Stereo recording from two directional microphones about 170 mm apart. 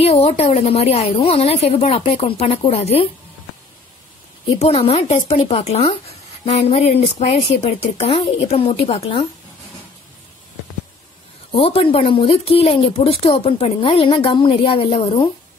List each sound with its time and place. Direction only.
0.0 s speech: 35° left (ahead or behind)
4.5 s speech: 35° left (ahead or behind)
11.5 s speech: 35° left (ahead or behind)